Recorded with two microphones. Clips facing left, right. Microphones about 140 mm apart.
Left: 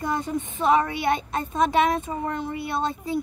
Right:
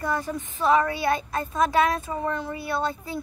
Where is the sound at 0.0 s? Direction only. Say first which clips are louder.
Left 1 dB; 20° left (ahead or behind).